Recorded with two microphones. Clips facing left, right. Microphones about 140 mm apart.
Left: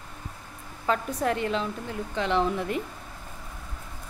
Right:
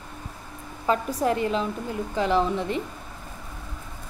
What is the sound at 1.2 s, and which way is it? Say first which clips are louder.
Speech: right 3 dB; 35° right (ahead or behind).